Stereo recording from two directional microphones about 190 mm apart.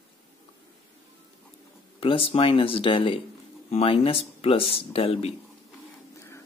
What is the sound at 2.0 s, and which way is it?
Speech, 30° left (ahead or behind).